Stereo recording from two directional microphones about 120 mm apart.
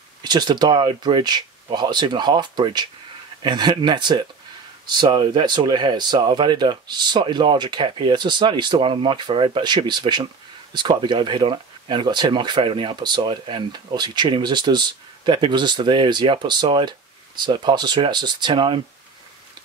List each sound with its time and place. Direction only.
0.2 s speech: 35° right (ahead or behind)